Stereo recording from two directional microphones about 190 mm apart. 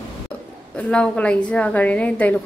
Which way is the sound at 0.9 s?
5° left (ahead or behind).